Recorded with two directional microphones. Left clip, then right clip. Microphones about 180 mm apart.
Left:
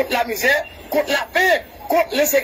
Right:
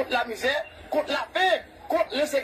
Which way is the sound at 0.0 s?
25° left (ahead or behind).